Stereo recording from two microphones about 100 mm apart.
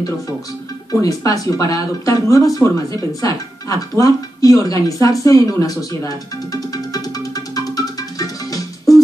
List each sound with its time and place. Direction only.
1.0 s speech: 35° left (ahead or behind)